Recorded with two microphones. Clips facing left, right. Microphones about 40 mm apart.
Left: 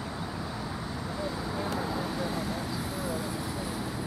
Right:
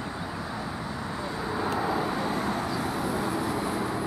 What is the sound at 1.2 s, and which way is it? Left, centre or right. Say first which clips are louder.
Vehicle: right 4 dB; centre.